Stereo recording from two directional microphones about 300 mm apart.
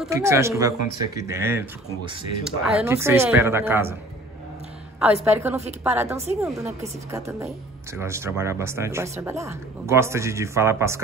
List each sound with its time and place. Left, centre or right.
0.0 s a woman's voice: centre
5.0 s a woman's voice: centre
5.6 s a woman's voice: right
5.9 s a woman's voice: centre